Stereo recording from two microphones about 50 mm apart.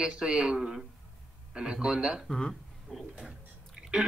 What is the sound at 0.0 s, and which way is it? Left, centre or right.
Speech, centre.